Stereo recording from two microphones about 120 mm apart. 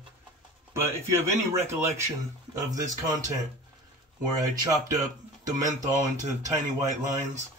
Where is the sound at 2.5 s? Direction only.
30° right (ahead or behind).